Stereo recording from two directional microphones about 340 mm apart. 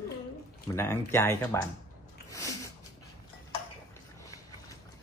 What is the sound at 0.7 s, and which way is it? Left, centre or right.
Speech, centre.